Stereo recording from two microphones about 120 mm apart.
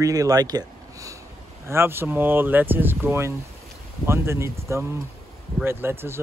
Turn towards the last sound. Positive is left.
turn(degrees=-20)  # may be behind; listen again after turning